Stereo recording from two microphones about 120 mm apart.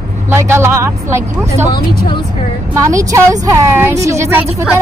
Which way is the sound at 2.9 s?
25° right (ahead or behind).